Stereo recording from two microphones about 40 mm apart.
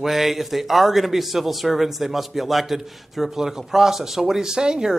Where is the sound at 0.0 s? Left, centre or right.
Centre.